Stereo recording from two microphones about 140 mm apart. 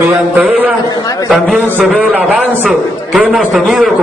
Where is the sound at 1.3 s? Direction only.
5° right (ahead or behind).